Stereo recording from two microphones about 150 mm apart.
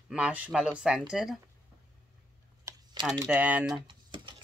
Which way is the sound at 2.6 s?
25° right (ahead or behind).